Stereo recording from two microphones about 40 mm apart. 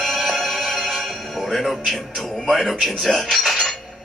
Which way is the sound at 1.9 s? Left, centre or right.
Centre.